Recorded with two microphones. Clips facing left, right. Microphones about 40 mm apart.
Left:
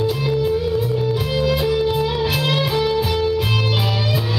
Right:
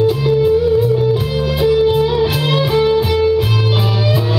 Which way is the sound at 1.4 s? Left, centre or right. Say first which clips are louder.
Right 5 dB; centre.